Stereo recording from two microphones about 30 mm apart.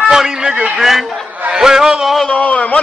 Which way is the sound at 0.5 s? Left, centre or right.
Right.